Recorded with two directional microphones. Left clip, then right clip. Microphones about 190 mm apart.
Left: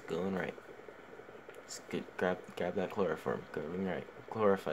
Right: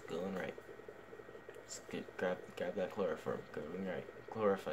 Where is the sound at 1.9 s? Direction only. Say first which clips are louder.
Left 4 dB; 40° left (ahead or behind).